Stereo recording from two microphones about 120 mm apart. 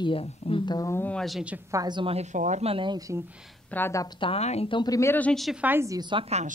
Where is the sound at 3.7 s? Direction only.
20° left (ahead or behind).